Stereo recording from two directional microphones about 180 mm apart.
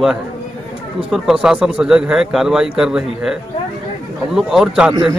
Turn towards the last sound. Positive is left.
turn(degrees=-5)  # may be behind; listen again after turning